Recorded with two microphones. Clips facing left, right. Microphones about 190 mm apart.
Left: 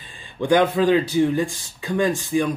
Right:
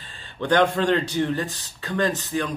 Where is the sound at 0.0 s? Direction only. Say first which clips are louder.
Left 3 dB; 15° left (ahead or behind).